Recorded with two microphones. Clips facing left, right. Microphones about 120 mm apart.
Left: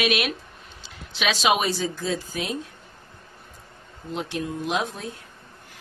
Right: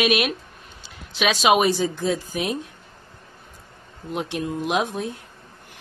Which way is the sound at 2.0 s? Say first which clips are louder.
Right 4 dB; 15° right (ahead or behind).